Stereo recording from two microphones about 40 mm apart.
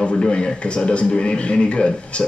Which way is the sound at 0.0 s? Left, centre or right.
Left.